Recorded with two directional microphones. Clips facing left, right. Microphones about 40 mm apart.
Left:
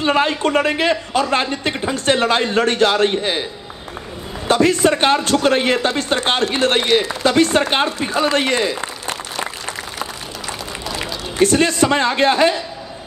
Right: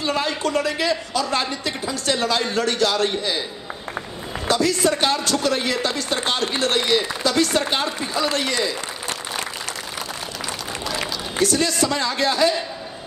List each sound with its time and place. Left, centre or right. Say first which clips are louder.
0.0 s a man's voice: left 6 dB; left
4.5 s a man's voice: left 5 dB; left
11.4 s a man's voice: left 6 dB; left